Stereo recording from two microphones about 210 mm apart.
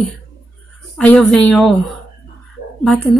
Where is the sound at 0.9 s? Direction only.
5° left (ahead or behind).